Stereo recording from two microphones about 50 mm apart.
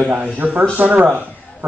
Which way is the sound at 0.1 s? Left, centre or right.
Right.